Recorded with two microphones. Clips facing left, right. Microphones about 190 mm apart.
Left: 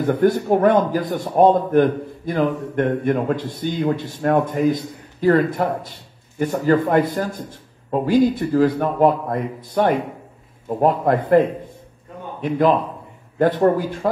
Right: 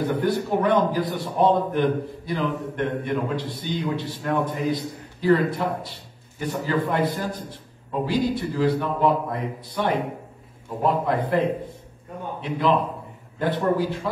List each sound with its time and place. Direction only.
0.0 s a man's voice: 45° left (ahead or behind)